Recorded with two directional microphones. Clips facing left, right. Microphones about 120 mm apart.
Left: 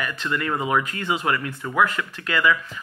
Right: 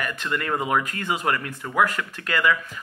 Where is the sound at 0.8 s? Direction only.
45° right (ahead or behind).